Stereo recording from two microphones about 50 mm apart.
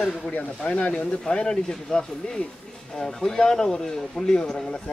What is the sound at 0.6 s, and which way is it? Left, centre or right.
Speech, left.